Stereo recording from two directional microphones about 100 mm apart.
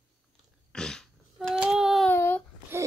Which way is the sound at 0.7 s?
5° left (ahead or behind).